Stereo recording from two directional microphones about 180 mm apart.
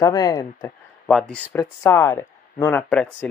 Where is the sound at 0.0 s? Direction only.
20° left (ahead or behind).